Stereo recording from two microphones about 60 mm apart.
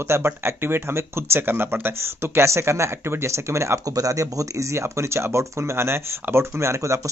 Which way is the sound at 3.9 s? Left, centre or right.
Right.